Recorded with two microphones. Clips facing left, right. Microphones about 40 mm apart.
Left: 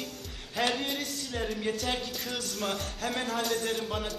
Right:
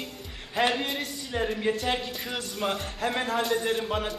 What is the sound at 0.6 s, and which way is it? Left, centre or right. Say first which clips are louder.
Speech: right 4 dB; centre.